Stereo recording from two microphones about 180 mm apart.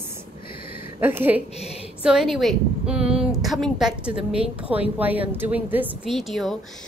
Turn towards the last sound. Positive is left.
turn(degrees=0)  # may be behind; listen again after turning